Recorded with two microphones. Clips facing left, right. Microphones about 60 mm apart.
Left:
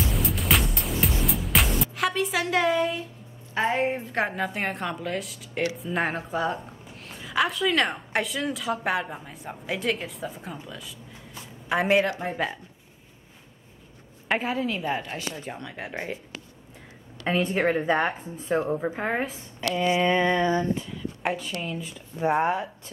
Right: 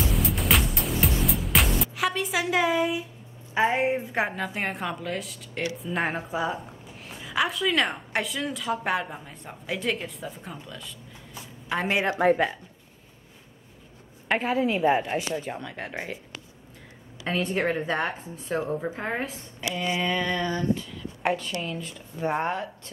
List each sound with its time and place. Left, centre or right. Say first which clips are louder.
0.1 s music: even; centre
3.5 s a woman's voice: right 1 dB; centre
11.3 s a sound: left 3 dB; centre
12.2 s speech: right 11 dB; right
14.2 s a woman's voice: right 1 dB; centre
14.6 s speech: right 5 dB; centre
15.4 s a woman's voice: right 1 dB; centre
17.3 s speech: left 2 dB; centre
20.1 s a sound: left 5 dB; left
21.2 s speech: right 3 dB; centre